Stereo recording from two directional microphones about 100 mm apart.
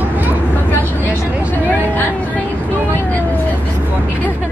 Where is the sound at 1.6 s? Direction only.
15° left (ahead or behind).